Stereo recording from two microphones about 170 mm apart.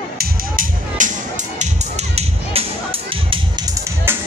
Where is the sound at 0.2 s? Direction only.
50° right (ahead or behind).